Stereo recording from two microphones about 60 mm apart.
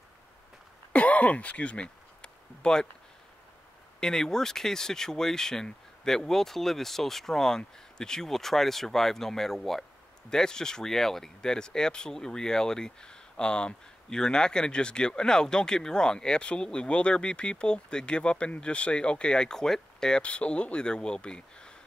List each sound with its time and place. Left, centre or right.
0.9 s throat clearing: left
4.0 s speech: centre